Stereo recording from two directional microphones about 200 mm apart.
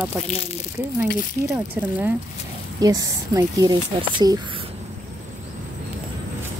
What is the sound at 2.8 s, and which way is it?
Speech, 20° right (ahead or behind).